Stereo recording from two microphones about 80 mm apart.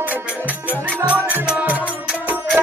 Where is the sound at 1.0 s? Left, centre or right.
Centre.